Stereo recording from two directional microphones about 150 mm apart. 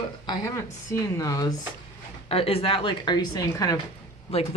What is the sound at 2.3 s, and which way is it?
A woman's voice, 40° left (ahead or behind).